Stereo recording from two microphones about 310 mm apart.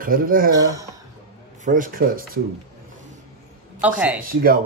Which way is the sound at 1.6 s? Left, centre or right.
Right.